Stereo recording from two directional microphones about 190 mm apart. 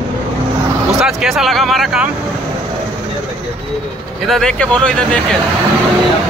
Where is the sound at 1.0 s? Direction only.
Centre (ahead or behind).